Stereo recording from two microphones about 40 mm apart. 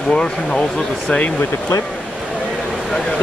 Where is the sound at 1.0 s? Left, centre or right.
Left.